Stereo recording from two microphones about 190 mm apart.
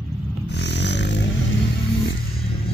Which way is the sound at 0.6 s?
65° left (ahead or behind).